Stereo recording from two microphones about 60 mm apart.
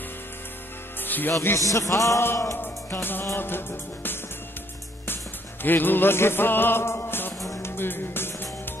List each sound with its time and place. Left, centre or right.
1.0 s music: left
1.7 s music: left
2.6 s music: left